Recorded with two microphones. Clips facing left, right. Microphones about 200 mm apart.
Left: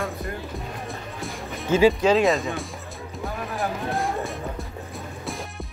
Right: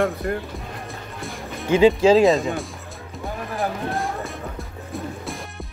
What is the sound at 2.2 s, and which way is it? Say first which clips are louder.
Speech: right 4 dB; centre (ahead or behind).